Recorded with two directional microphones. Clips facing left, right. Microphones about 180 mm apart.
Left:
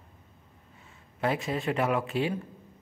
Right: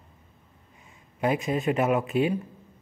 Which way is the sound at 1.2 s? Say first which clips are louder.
Right 4 dB; 15° right (ahead or behind).